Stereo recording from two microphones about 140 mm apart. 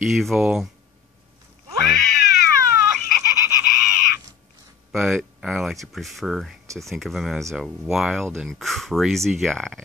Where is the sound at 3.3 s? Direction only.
25° right (ahead or behind).